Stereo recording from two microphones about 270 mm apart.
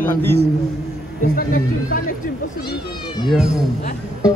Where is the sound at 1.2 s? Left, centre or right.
Left.